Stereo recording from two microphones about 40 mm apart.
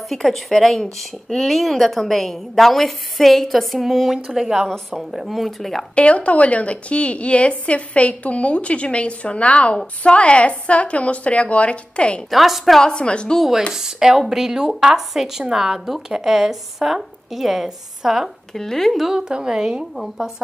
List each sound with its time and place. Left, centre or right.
0.1 s a woman's voice: centre
5.9 s a woman's voice: left
12.3 s a woman's voice: centre
12.8 s a woman's voice: left
13.4 s a woman's voice: centre
18.5 s a woman's voice: centre
19.1 s a woman's voice: centre